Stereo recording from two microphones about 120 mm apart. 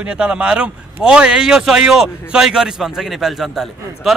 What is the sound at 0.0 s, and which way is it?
A man's voice, 10° right (ahead or behind).